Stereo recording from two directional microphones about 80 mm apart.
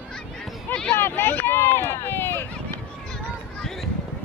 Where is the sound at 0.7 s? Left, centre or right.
Centre.